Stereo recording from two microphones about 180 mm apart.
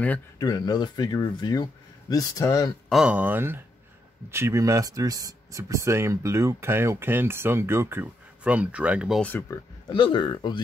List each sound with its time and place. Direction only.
0.4 s speech: 20° left (ahead or behind)
2.9 s speech: 5° right (ahead or behind)
9.2 s speech: 10° left (ahead or behind)
9.9 s speech: 25° left (ahead or behind)